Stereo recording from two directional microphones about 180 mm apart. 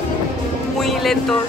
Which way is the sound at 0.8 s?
Centre (ahead or behind).